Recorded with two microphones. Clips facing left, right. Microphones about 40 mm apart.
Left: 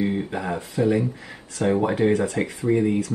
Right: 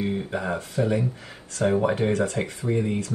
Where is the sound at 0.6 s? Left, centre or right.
Left.